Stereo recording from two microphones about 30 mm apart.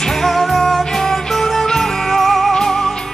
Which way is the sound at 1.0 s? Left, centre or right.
Centre.